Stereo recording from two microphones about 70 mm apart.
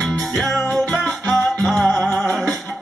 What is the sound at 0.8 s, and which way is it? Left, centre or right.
Music, centre.